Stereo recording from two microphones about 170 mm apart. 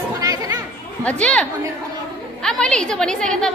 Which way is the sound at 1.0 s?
5° left (ahead or behind).